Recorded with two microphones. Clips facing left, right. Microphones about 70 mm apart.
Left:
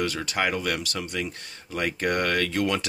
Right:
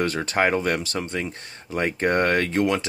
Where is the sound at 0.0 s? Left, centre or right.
Right.